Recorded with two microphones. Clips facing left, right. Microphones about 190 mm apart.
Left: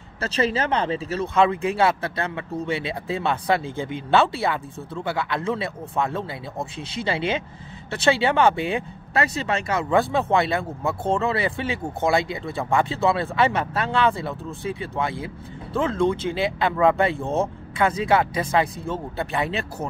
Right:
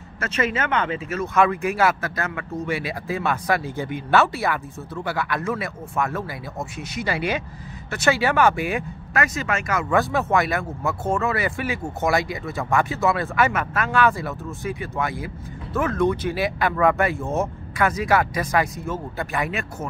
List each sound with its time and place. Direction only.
0.2 s speech: 30° left (ahead or behind)